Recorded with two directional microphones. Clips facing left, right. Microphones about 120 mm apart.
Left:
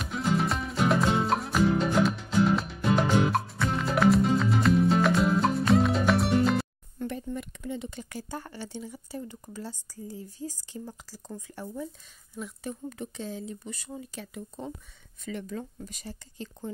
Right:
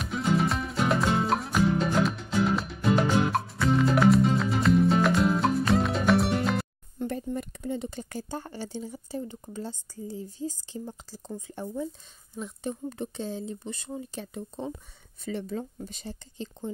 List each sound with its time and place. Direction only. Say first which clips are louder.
0.0 s music: right 2 dB; centre (ahead or behind)
7.1 s speech: right 2 dB; 40° right (ahead or behind)